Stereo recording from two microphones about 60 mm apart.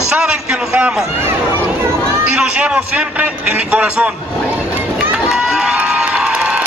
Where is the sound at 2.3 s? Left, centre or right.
Centre.